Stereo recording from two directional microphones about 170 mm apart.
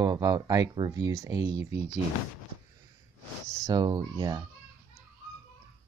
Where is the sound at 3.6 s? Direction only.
25° right (ahead or behind).